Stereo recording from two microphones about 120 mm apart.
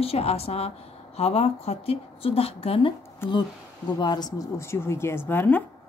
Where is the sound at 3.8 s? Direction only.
35° left (ahead or behind).